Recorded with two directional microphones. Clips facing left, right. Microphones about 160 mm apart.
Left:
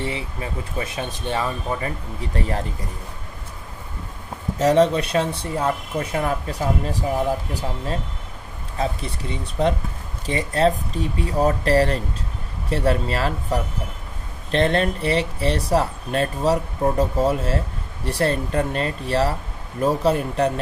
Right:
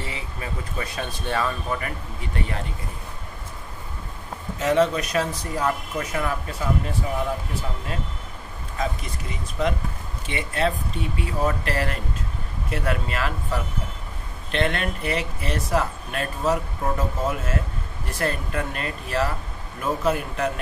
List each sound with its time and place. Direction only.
0.0 s speech: 25° left (ahead or behind)
4.6 s speech: 35° left (ahead or behind)
8.7 s speech: 30° left (ahead or behind)